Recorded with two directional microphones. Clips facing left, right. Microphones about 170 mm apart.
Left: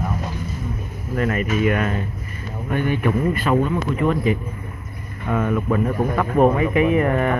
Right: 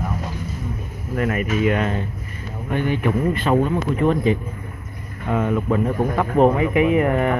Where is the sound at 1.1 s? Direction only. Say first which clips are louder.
Even; 10° right (ahead or behind).